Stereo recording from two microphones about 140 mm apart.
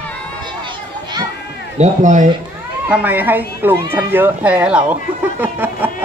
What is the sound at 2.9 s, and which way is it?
Speech, 10° right (ahead or behind).